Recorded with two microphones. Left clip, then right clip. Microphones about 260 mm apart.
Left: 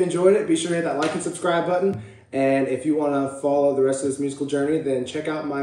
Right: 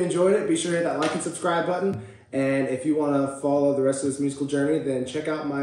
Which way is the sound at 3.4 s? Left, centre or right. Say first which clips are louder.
Left 4 dB; centre.